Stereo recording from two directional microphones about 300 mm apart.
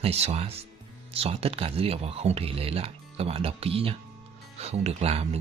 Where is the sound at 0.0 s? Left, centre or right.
Right.